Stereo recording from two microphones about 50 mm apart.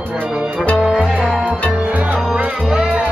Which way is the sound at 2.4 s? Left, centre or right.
Centre.